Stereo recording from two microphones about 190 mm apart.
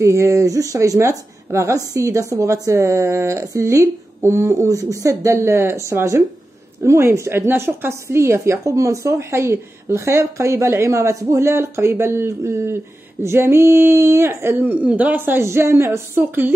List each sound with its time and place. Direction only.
0.0 s a woman's voice: 15° right (ahead or behind)